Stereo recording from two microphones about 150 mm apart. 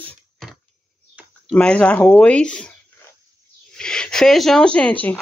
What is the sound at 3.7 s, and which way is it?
Speech, 5° left (ahead or behind).